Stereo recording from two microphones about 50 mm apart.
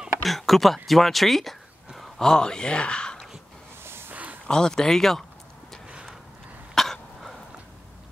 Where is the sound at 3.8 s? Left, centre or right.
Right.